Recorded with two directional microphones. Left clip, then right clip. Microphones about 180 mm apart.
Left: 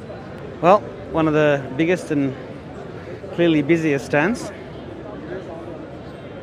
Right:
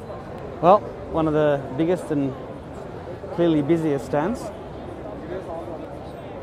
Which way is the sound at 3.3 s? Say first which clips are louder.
Left 3 dB; 15° right (ahead or behind).